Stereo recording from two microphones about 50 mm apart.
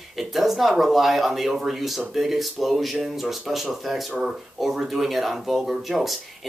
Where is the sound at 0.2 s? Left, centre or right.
Centre.